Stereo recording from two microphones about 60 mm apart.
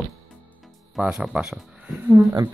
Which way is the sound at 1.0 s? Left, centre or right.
Centre.